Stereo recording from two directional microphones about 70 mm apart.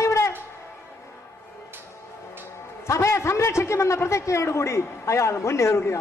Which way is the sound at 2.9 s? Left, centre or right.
Left.